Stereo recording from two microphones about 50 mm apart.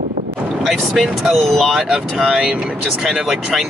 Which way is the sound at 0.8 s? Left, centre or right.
Centre.